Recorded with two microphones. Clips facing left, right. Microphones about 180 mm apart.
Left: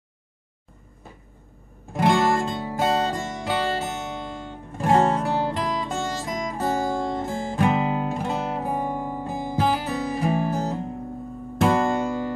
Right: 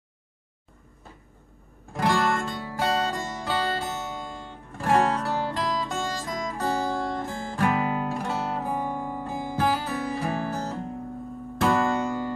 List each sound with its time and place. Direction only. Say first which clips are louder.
2.0 s music: left 4 dB; 20° left (ahead or behind)